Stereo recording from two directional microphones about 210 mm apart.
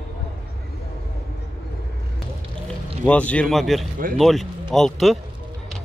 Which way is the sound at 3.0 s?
5° left (ahead or behind).